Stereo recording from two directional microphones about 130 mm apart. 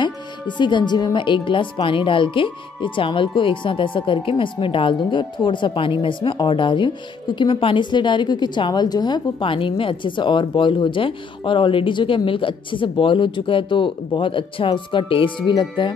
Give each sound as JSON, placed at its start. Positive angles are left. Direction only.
{"t": 0.0, "sound": "speech", "side_deg": 35}